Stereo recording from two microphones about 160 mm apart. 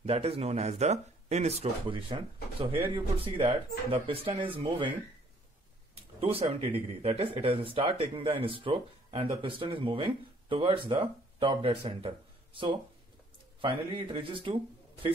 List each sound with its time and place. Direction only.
0.0 s speech: 40° right (ahead or behind)
6.2 s speech: 40° right (ahead or behind)